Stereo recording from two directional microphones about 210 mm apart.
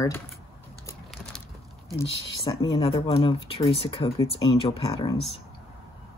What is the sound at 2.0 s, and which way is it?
Speech, 20° left (ahead or behind).